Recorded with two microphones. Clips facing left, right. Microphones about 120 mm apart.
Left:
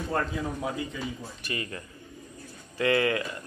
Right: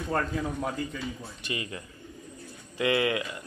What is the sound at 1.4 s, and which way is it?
Speech, 20° right (ahead or behind).